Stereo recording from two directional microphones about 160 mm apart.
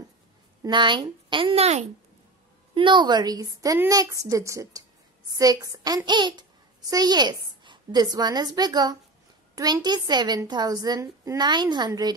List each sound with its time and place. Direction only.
0.6 s a woman's voice: 30° right (ahead or behind)
2.7 s a woman's voice: 30° right (ahead or behind)